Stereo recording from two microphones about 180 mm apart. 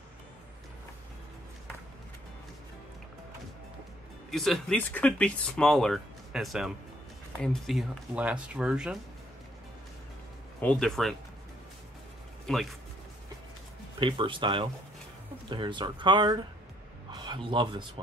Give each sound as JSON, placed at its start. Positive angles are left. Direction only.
{"t": 4.3, "sound": "speech", "side_deg": 0}
{"t": 10.6, "sound": "speech", "side_deg": 5}
{"t": 13.9, "sound": "a man's voice", "side_deg": -25}